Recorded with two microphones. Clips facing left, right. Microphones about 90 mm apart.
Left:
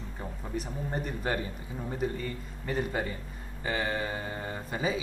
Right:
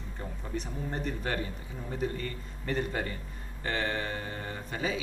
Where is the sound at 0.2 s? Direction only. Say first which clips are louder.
Left 1 dB; 5° left (ahead or behind).